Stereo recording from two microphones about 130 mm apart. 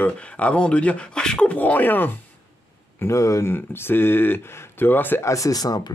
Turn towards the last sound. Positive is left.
turn(degrees=30)  # may be behind; listen again after turning